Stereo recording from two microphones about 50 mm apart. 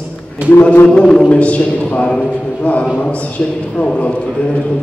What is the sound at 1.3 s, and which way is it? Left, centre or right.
Speech, left.